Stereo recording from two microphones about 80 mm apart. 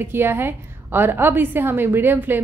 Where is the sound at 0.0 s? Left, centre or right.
Right.